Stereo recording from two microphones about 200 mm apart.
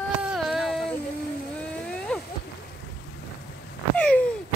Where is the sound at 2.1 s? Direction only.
5° left (ahead or behind).